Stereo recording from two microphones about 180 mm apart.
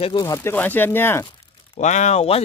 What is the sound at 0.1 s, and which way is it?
Speech, 20° left (ahead or behind).